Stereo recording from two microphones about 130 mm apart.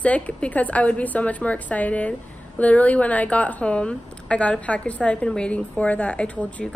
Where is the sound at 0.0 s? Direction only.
10° left (ahead or behind).